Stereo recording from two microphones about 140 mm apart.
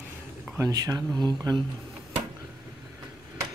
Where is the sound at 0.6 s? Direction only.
25° right (ahead or behind).